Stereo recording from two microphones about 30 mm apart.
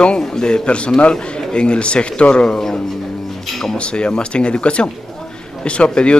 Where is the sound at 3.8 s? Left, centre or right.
Left.